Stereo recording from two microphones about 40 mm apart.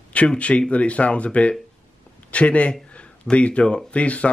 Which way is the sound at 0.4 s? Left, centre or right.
Left.